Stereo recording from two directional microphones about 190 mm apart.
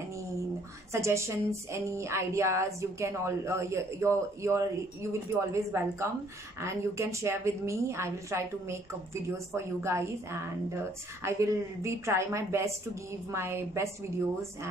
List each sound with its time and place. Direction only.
0.9 s a woman's voice: 15° right (ahead or behind)